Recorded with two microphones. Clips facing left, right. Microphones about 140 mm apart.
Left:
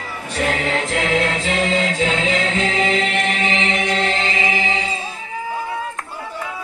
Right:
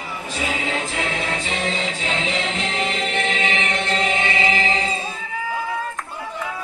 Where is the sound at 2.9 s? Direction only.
90° left.